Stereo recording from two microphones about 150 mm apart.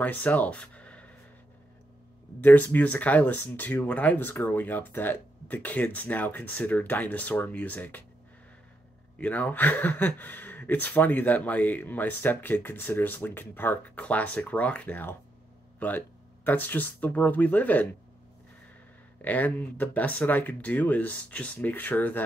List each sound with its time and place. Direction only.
0.0 s speech: 10° left (ahead or behind)
2.4 s speech: 10° left (ahead or behind)
9.2 s speech: 10° left (ahead or behind)
19.2 s speech: 10° left (ahead or behind)